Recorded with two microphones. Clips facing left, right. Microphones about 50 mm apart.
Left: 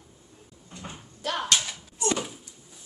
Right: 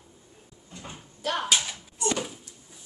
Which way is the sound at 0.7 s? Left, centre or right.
Left.